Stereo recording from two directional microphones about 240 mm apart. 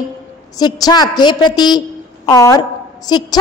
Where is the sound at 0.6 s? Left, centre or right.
Centre.